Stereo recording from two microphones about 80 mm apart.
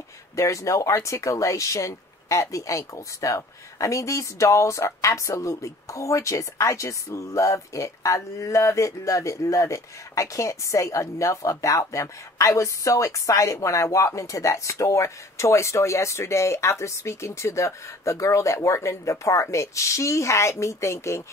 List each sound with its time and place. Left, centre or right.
0.4 s speech: left